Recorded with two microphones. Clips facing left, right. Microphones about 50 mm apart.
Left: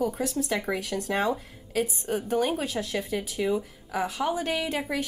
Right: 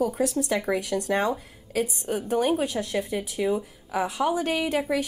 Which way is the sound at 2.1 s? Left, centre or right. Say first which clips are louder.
Right 1 dB; right.